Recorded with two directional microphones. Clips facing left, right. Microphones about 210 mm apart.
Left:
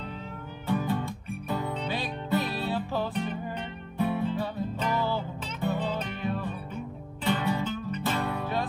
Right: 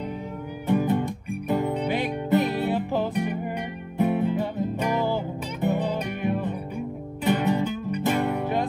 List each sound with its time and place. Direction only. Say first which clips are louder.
0.7 s music: right 6 dB; 20° right (ahead or behind)